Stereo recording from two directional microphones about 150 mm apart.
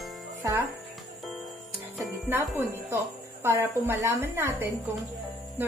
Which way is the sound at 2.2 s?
15° right (ahead or behind).